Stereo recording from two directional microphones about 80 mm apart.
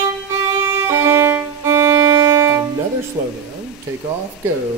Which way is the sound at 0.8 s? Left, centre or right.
Right.